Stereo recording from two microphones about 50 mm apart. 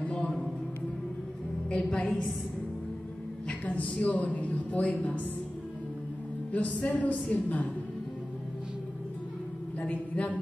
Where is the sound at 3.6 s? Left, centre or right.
Left.